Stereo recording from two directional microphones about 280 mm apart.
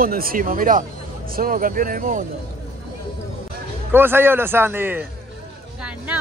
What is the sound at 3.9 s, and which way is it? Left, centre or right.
Speech, centre.